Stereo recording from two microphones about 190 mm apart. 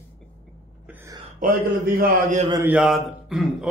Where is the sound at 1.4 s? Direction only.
50° right (ahead or behind).